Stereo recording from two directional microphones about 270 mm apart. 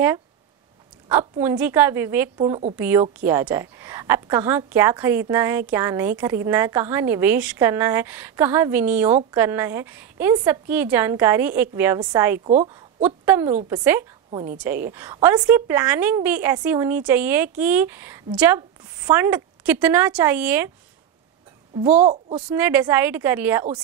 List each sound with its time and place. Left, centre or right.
1.0 s a woman's voice: centre
12.4 s speech: right
13.0 s a woman's voice: centre
21.7 s speech: right
22.5 s a woman's voice: centre